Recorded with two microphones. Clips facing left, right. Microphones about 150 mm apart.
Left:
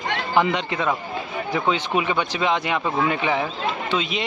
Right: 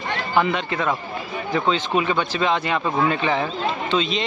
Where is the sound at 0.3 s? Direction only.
20° left (ahead or behind).